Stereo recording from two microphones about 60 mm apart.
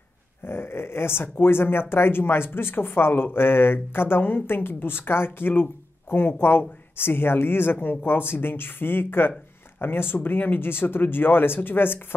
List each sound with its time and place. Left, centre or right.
0.5 s speech: left